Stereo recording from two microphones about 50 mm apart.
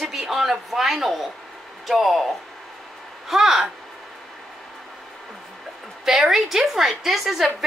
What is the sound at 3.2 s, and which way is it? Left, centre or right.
Speech, centre.